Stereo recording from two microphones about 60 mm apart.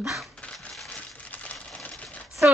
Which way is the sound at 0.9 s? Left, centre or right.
Left.